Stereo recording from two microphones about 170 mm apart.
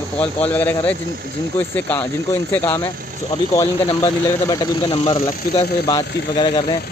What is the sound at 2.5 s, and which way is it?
Speech, 15° left (ahead or behind).